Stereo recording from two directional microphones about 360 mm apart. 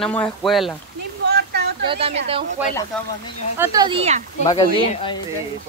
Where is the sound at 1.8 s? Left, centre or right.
Centre.